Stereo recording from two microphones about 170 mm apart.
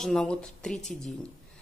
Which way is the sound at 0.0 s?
5° left (ahead or behind).